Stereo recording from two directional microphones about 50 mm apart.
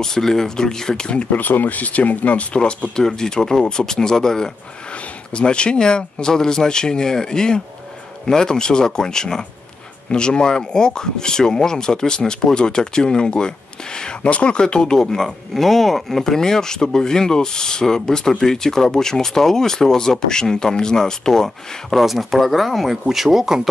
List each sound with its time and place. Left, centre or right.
0.0 s speech: centre
1.3 s speech: left
3.0 s speech: centre
21.9 s speech: centre